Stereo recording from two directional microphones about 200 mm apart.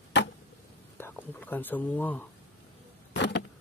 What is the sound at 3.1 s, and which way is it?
Vehicle, 60° left (ahead or behind).